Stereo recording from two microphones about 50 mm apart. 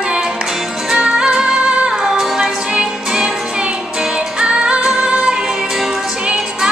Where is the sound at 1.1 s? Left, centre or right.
Centre.